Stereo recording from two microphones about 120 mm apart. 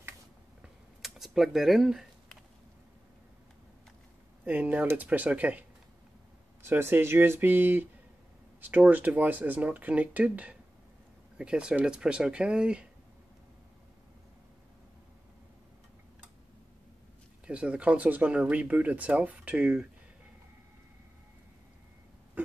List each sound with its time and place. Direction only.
1.0 s typing: 5° right (ahead or behind)
4.5 s speech: 15° right (ahead or behind)
17.5 s speech: 10° right (ahead or behind)